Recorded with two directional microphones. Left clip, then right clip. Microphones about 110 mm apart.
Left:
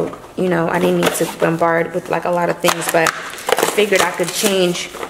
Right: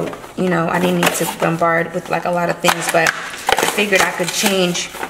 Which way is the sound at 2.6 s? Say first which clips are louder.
Right 2 dB; 10° left (ahead or behind).